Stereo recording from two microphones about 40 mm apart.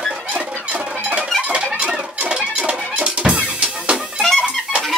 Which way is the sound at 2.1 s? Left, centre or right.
Right.